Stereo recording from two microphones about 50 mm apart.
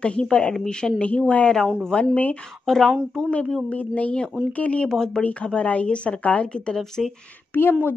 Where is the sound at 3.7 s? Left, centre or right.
Left.